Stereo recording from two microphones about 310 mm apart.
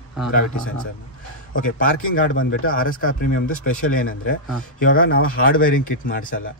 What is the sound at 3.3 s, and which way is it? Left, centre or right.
Speech, left.